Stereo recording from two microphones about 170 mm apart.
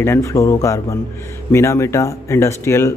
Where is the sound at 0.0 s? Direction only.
15° left (ahead or behind).